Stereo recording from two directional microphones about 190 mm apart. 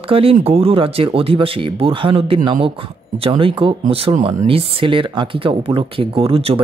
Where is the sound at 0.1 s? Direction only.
30° right (ahead or behind).